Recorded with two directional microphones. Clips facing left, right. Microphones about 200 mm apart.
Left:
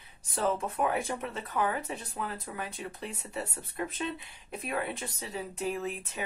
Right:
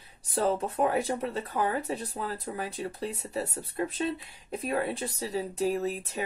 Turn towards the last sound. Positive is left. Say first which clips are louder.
# right 5 dB
turn(degrees=-35)  # may be behind; listen again after turning